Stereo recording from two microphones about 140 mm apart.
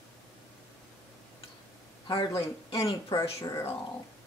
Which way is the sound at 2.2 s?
30° left (ahead or behind).